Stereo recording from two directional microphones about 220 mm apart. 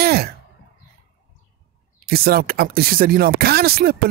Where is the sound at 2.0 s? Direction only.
45° right (ahead or behind).